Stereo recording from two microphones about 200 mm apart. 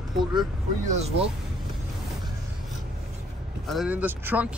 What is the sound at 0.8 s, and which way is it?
Speech, 35° right (ahead or behind).